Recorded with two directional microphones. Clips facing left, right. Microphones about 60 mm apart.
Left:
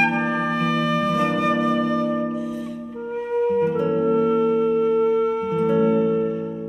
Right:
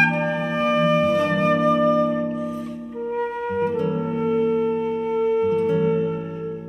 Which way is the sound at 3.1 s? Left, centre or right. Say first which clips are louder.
Left 5 dB; right.